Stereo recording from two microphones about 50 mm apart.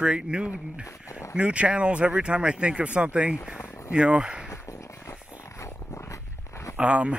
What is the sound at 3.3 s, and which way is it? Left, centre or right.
Speech, centre.